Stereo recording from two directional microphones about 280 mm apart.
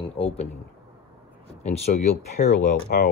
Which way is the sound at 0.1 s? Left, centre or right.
Centre.